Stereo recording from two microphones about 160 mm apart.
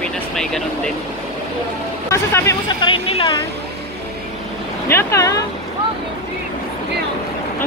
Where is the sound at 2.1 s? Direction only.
20° left (ahead or behind).